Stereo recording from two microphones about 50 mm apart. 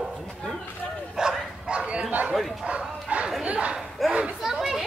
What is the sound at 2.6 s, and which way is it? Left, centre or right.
Bow-wow, centre.